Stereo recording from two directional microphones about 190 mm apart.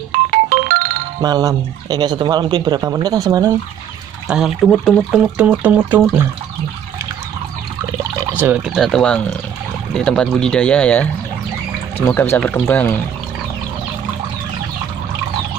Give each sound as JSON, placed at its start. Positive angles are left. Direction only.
{"t": 0.1, "sound": "ringtone", "side_deg": -45}
{"t": 1.2, "sound": "speech", "side_deg": -20}
{"t": 4.3, "sound": "speech", "side_deg": -5}
{"t": 8.5, "sound": "speech", "side_deg": -5}
{"t": 12.1, "sound": "speech", "side_deg": 10}